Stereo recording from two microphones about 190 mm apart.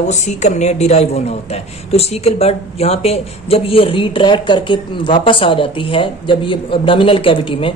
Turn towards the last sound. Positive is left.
turn(degrees=25)  # may be behind; listen again after turning